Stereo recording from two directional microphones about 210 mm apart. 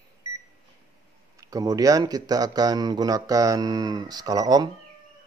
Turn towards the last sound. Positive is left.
turn(degrees=-20)  # may be behind; listen again after turning